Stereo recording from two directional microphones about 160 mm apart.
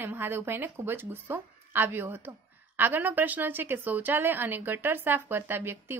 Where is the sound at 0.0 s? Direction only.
15° right (ahead or behind).